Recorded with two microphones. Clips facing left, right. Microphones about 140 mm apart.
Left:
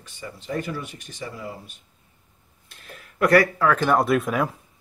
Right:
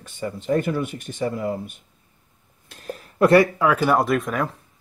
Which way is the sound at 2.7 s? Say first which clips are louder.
Right 11 dB; 40° right (ahead or behind).